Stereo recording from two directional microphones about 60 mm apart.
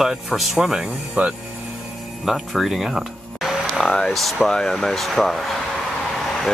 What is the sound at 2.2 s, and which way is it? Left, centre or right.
Speech, centre.